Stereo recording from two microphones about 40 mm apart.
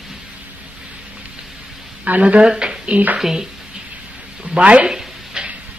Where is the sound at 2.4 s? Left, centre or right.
Right.